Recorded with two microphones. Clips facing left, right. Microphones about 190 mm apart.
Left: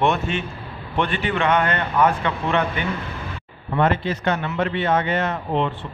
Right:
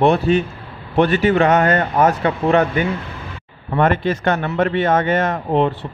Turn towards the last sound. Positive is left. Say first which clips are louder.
# right 5 dB
turn(degrees=-45)  # may be behind; listen again after turning